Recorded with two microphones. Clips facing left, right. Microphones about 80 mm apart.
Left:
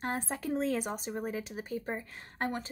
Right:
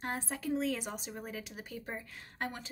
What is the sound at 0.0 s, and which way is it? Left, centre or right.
A woman's voice, left.